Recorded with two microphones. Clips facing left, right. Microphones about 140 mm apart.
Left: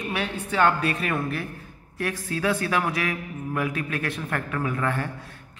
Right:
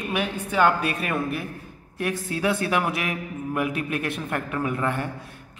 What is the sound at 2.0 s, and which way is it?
A man's voice, 20° right (ahead or behind).